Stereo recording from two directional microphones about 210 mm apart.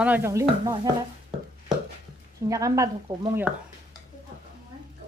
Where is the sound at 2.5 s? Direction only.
15° right (ahead or behind).